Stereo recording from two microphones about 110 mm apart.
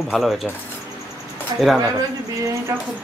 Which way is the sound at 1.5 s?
45° right (ahead or behind).